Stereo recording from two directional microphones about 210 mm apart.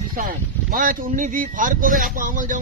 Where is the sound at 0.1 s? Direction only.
40° right (ahead or behind).